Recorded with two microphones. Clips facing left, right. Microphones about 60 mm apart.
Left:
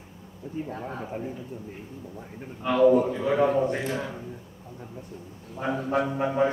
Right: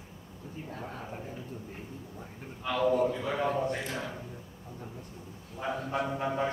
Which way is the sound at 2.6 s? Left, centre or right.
Left.